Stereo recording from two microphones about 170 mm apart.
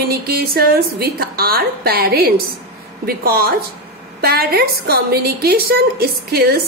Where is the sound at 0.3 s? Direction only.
65° right (ahead or behind).